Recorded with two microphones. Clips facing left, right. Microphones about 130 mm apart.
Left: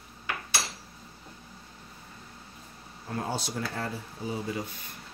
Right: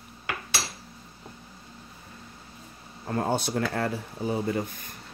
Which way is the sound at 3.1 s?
55° right (ahead or behind).